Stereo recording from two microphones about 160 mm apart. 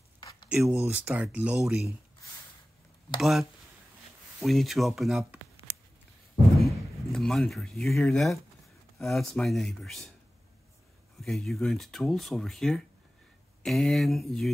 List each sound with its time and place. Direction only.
0.5 s speech: 10° right (ahead or behind)
3.2 s speech: centre (ahead or behind)
6.6 s speech: centre (ahead or behind)
11.2 s speech: centre (ahead or behind)